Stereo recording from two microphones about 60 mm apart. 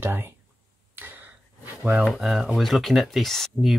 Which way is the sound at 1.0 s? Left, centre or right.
Right.